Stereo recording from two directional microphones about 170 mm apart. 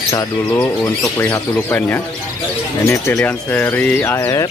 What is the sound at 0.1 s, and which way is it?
Speech, 15° left (ahead or behind).